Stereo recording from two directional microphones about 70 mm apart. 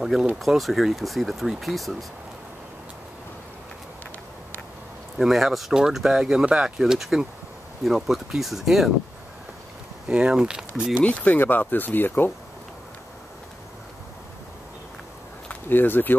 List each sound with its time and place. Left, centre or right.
0.0 s speech: centre
5.2 s speech: centre
10.0 s speech: centre
11.0 s speech: left
15.7 s speech: left